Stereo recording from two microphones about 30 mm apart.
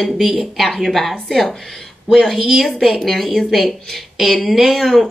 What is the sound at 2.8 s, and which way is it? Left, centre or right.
Speech, centre.